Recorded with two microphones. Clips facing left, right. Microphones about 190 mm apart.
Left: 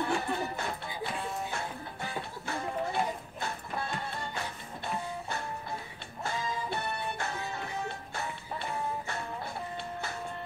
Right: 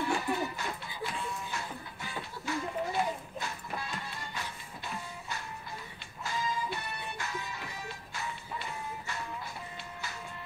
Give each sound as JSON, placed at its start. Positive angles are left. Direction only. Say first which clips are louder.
{"t": 0.0, "sound": "music", "louder": "even", "side_deg": 55}